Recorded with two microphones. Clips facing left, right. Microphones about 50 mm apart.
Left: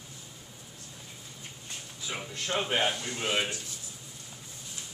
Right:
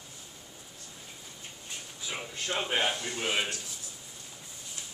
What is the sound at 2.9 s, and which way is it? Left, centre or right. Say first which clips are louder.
Speech: even; right.